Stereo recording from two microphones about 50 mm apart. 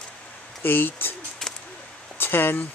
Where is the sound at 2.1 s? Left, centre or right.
Left.